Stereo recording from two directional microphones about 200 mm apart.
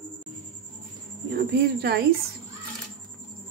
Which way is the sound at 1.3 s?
50° right (ahead or behind).